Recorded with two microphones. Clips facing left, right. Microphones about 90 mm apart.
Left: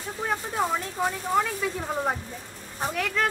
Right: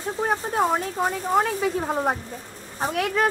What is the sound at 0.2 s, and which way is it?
Speech, 40° right (ahead or behind).